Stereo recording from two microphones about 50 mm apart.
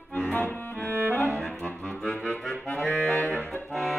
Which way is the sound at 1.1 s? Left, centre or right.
Left.